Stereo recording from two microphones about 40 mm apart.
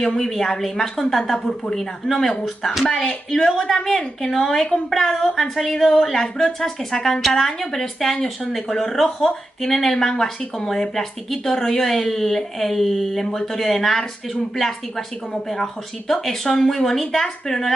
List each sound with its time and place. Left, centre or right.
0.0 s a woman's voice: centre
2.9 s speech: left
3.3 s a woman's voice: centre
5.8 s a woman's voice: centre
6.2 s a woman's voice: centre